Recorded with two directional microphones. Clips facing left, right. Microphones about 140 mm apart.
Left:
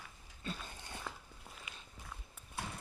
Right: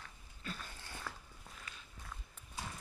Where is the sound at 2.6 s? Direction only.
60° left (ahead or behind).